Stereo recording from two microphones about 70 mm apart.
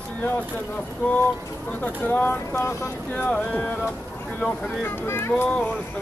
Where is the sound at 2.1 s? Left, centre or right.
Left.